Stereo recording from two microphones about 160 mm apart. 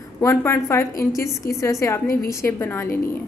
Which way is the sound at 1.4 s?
65° left (ahead or behind).